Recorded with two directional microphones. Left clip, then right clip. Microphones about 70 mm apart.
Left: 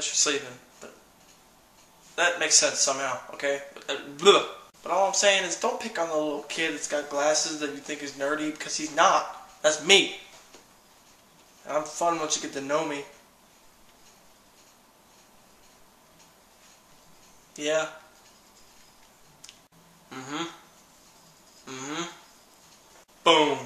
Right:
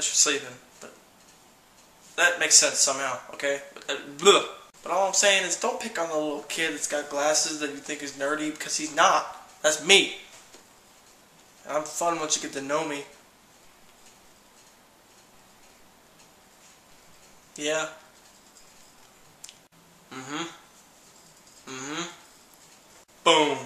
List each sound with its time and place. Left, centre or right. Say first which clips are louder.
0.0 s a sound: right 2 dB; centre
2.1 s speech: right 2 dB; centre
11.6 s speech: left 1 dB; centre
17.6 s speech: left 1 dB; centre
20.1 s speech: even; centre
21.6 s speech: even; centre
23.2 s speech: even; centre